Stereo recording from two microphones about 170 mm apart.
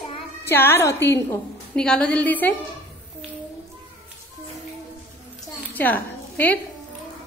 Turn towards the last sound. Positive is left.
turn(degrees=10)  # may be behind; listen again after turning